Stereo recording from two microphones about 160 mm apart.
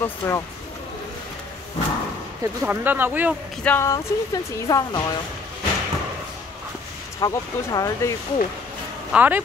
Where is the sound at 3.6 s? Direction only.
15° left (ahead or behind).